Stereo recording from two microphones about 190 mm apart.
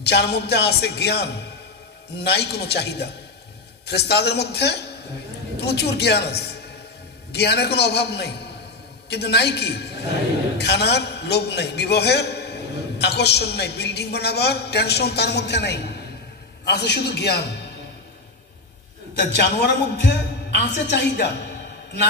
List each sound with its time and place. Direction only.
0.0 s a man's voice: 60° left (ahead or behind)
19.1 s a man's voice: 65° left (ahead or behind)